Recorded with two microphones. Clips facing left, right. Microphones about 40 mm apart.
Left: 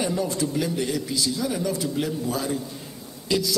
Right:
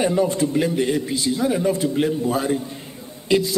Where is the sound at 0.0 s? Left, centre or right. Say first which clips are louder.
Right 6 dB; right.